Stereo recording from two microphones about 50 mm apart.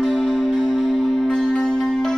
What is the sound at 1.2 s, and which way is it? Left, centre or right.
Music, centre.